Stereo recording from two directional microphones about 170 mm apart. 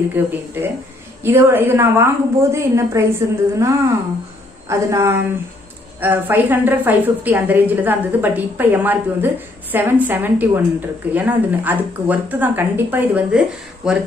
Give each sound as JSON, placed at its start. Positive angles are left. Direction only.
{"t": 0.1, "sound": "a woman's voice", "side_deg": -10}